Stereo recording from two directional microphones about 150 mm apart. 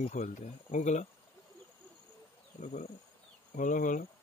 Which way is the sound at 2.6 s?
55° left (ahead or behind).